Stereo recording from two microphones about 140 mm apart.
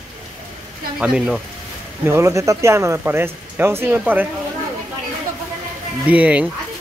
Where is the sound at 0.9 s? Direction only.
5° right (ahead or behind).